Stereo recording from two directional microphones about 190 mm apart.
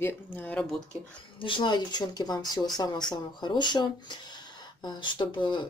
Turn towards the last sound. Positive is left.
turn(degrees=25)  # may be behind; listen again after turning